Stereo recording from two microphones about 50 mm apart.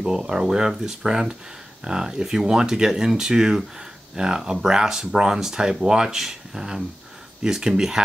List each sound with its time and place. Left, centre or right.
0.0 s speech: centre